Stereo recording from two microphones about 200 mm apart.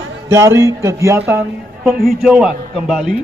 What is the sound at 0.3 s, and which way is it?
Speech, 15° right (ahead or behind).